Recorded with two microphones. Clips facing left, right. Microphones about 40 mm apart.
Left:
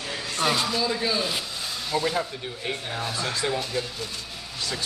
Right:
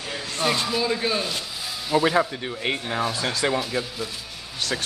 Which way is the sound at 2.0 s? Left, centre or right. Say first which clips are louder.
Right 6 dB; right.